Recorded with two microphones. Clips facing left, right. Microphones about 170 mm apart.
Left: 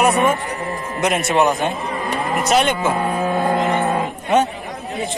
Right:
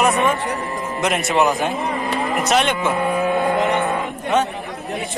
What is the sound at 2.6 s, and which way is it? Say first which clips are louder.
Cattle: left 1 dB; 40° left (ahead or behind).